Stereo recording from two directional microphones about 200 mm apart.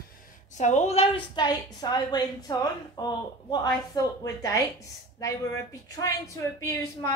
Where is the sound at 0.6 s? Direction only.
35° left (ahead or behind).